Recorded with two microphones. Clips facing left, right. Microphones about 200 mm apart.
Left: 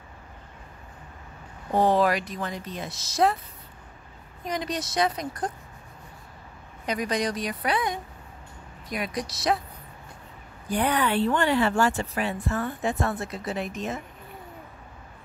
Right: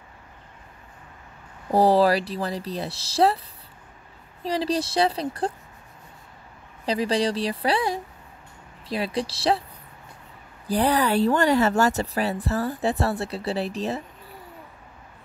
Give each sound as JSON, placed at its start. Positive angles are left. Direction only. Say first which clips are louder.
{"t": 1.7, "sound": "speech", "louder": "right 4 dB", "side_deg": -35}
{"t": 4.4, "sound": "speech", "louder": "right 6 dB", "side_deg": -30}
{"t": 6.9, "sound": "a woman's voice", "louder": "right 4 dB", "side_deg": -30}
{"t": 10.7, "sound": "speech", "louder": "right 3 dB", "side_deg": -35}